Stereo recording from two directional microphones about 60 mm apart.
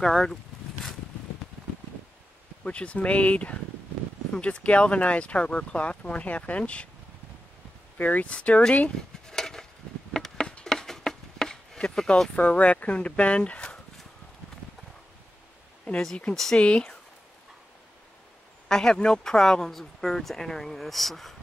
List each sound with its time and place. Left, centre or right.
0.0 s speech: centre
2.6 s speech: left
8.0 s speech: left; by 9.7 s centre
10.1 s a sound: centre
12.4 s speech: left
16.5 s speech: centre
18.7 s speech: centre